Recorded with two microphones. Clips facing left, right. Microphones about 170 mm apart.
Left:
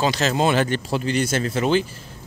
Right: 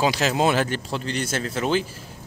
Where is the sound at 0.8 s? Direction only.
10° left (ahead or behind).